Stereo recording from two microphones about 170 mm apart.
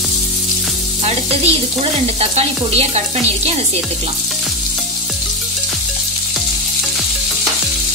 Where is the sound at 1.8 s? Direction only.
35° right (ahead or behind).